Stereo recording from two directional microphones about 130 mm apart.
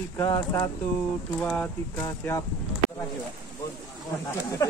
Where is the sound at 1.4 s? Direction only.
10° left (ahead or behind).